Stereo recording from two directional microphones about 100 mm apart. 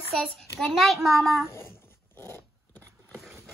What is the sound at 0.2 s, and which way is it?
A child's voice, 5° left (ahead or behind).